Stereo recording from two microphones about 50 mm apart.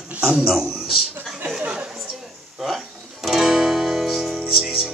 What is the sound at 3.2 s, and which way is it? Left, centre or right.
Guitar, centre.